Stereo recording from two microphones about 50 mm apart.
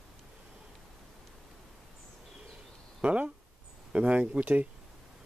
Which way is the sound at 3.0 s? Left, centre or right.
Right.